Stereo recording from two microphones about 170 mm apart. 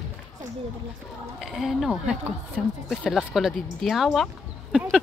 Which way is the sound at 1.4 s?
Centre (ahead or behind).